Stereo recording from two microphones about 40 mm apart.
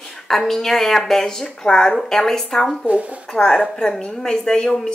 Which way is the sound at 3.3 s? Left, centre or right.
Centre.